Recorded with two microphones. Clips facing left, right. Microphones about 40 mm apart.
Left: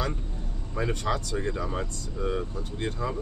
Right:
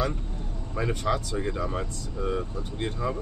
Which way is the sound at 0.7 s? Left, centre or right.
Centre.